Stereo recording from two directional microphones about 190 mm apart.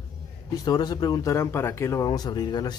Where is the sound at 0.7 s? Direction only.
20° left (ahead or behind).